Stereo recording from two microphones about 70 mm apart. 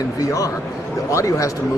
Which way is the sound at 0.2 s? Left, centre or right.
Left.